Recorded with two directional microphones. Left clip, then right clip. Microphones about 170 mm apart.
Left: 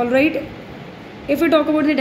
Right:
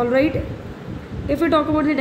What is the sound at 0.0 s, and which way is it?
Speech, 20° left (ahead or behind).